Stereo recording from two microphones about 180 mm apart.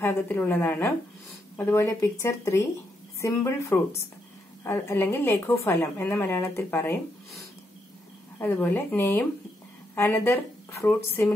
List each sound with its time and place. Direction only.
0.0 s a woman's voice: 10° left (ahead or behind)
8.4 s a woman's voice: 10° left (ahead or behind)